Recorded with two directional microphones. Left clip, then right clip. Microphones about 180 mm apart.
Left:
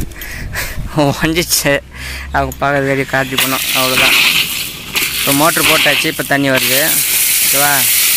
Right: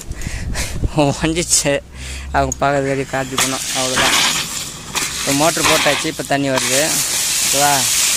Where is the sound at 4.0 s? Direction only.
15° right (ahead or behind).